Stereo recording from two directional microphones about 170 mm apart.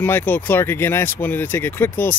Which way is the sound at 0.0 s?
10° left (ahead or behind).